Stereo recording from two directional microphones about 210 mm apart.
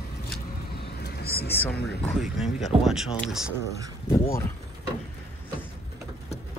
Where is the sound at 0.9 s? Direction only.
50° left (ahead or behind).